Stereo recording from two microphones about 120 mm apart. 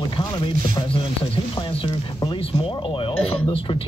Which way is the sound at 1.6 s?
40° left (ahead or behind).